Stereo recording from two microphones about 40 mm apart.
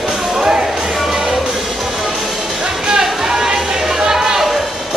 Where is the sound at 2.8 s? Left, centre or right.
Centre.